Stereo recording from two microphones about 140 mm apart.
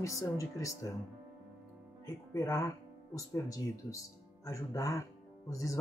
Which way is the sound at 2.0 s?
25° left (ahead or behind).